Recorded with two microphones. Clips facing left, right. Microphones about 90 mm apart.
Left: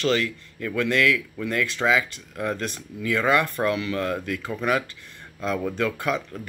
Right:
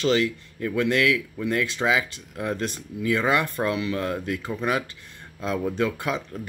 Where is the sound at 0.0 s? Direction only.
20° right (ahead or behind).